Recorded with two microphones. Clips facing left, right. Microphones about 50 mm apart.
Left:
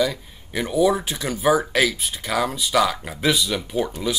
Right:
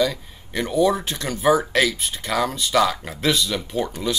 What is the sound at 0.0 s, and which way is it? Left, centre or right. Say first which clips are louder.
Speech: right 1 dB; centre.